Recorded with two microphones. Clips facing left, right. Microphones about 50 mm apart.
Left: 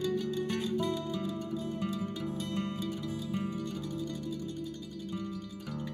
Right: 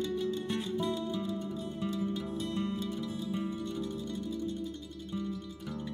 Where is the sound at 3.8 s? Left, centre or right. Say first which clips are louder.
Even; right.